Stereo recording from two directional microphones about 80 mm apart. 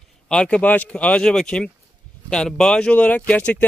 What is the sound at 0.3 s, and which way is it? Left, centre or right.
Speech, centre.